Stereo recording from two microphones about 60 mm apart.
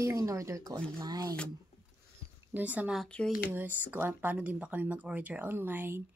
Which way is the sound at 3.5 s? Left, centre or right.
Right.